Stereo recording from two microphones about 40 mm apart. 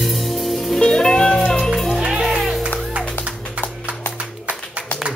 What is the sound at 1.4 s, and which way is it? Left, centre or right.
Music, centre.